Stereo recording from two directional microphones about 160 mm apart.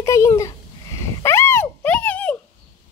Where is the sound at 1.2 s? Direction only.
15° left (ahead or behind).